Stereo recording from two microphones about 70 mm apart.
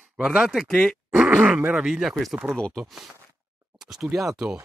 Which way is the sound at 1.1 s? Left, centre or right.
Centre.